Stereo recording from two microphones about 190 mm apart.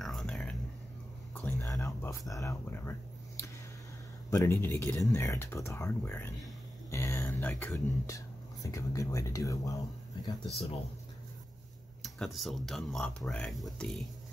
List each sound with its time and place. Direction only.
0.0 s whispering: centre (ahead or behind)
1.3 s speech: 10° left (ahead or behind)
10.2 s speech: 25° left (ahead or behind)
12.0 s speech: centre (ahead or behind)